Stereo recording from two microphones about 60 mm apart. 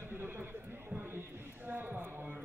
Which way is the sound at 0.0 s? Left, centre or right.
Right.